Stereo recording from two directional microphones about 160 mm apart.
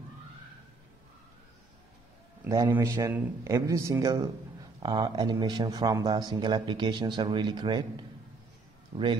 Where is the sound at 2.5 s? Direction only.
20° right (ahead or behind).